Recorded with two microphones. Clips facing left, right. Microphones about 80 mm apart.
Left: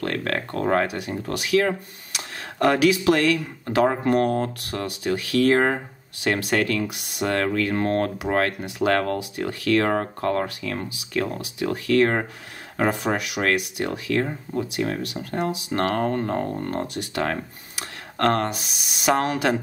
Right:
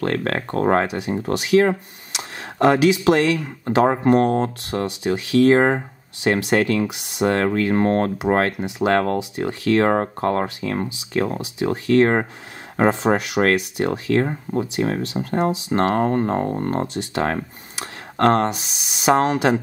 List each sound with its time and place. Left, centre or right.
0.0 s speech: right